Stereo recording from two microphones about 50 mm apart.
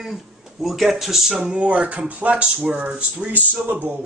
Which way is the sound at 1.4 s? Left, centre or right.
Right.